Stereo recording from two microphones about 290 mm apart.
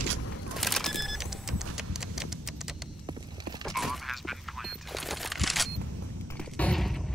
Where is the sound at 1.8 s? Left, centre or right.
Centre.